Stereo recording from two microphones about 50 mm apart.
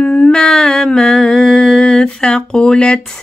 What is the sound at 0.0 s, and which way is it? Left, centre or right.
Mantra, centre.